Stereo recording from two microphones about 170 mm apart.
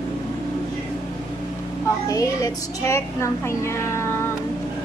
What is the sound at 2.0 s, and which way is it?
Speech, 20° left (ahead or behind).